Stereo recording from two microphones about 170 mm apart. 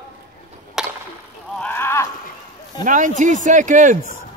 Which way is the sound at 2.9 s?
50° right (ahead or behind).